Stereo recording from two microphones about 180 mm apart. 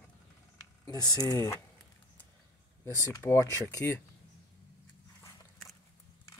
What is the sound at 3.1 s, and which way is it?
Speech, 15° left (ahead or behind).